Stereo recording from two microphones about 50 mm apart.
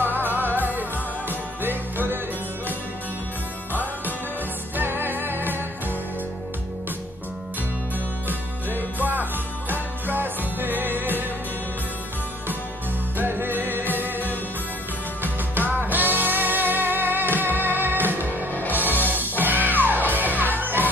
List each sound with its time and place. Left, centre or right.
0.0 s music: right
4.7 s music: right
8.3 s music: right
13.2 s music: right